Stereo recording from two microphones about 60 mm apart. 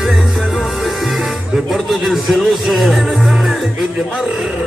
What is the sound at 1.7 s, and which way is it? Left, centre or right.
Speech, centre.